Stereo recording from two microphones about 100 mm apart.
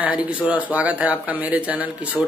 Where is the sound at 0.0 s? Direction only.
15° right (ahead or behind).